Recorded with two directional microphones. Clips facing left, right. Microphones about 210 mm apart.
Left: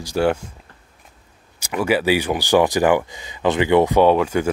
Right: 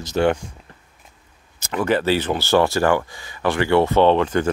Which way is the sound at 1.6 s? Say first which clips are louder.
Left 1 dB; 10° left (ahead or behind).